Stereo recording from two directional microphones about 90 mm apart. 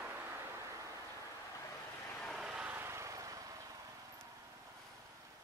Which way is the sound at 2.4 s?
10° right (ahead or behind).